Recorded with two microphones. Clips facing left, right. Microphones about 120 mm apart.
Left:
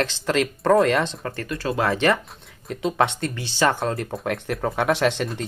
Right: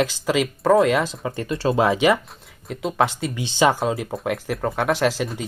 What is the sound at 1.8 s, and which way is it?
Speech, 10° right (ahead or behind).